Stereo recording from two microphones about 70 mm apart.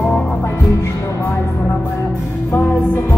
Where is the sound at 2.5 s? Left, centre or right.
Left.